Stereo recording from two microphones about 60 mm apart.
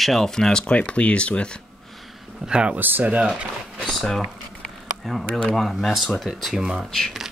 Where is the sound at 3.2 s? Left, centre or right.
Centre.